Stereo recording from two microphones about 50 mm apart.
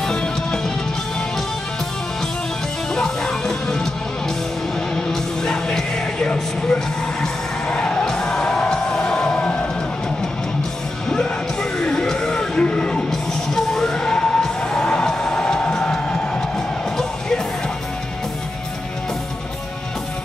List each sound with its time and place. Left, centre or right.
0.1 s music: centre
2.9 s music: centre
4.9 s music: centre
11.8 s music: centre
13.1 s music: centre